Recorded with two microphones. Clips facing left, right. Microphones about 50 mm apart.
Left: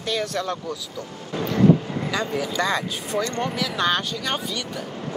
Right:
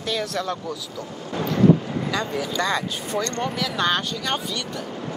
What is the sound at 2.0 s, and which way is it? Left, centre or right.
Speech, centre.